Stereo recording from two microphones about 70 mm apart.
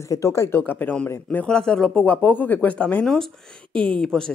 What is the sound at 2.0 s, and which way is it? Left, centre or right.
A woman's voice, left.